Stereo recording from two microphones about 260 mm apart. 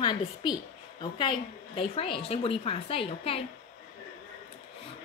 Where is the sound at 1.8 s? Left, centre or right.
Left.